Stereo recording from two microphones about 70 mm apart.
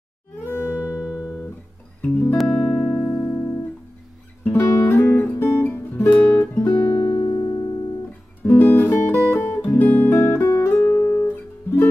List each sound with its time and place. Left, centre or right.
0.4 s music: left
0.9 s guitar: centre
2.0 s music: left
3.3 s music: left
7.2 s music: left
8.5 s music: left
9.8 s guitar: left
10.1 s music: left